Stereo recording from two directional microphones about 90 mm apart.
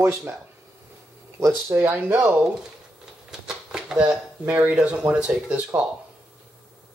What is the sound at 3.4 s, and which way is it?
Speech, 5° right (ahead or behind).